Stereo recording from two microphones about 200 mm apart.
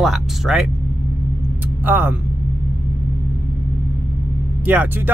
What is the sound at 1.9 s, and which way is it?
Speech, 10° right (ahead or behind).